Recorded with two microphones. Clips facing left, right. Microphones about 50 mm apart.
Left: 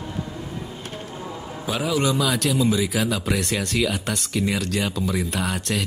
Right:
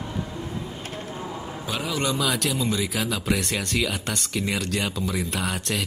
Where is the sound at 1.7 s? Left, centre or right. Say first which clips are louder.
Left 4 dB; centre.